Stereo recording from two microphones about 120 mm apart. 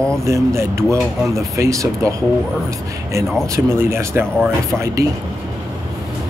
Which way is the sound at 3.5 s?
20° right (ahead or behind).